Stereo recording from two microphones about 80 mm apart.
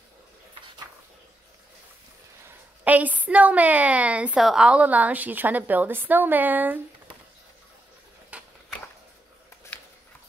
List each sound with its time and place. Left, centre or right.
2.8 s a woman's voice: centre
8.3 s mechanisms: centre